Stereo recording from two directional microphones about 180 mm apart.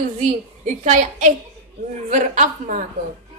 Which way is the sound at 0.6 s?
40° right (ahead or behind).